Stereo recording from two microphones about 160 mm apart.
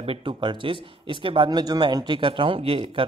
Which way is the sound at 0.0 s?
35° right (ahead or behind).